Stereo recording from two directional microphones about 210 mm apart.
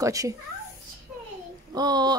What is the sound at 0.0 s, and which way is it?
Speech, 15° right (ahead or behind).